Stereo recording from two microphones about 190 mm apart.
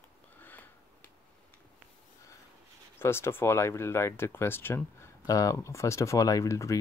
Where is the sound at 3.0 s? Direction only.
15° left (ahead or behind).